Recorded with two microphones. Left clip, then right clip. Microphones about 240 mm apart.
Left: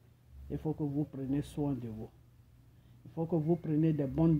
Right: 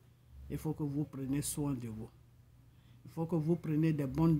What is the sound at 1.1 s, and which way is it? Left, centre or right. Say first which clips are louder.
Speech: left 2 dB; right.